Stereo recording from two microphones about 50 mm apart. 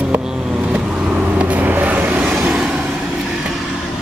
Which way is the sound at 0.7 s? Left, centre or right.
Centre.